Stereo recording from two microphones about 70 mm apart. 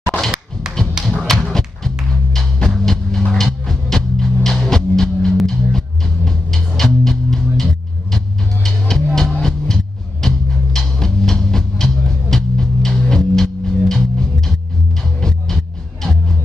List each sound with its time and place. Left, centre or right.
0.1 s thunk: left
0.7 s tap: centre
1.2 s dog: centre
2.3 s music: centre